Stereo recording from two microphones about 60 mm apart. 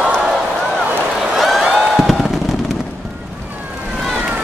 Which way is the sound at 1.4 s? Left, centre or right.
Centre.